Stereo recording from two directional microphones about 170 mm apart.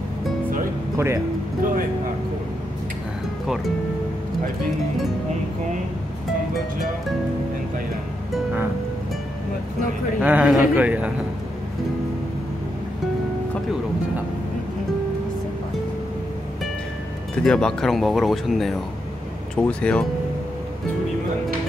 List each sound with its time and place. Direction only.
0.9 s a man's voice: 15° right (ahead or behind)
10.2 s a man's voice: 10° right (ahead or behind)
17.4 s speech: 5° left (ahead or behind)